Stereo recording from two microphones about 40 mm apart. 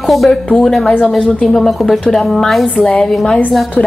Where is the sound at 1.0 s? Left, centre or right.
Centre.